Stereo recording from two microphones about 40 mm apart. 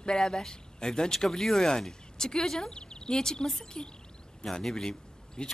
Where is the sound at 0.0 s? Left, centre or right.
Centre.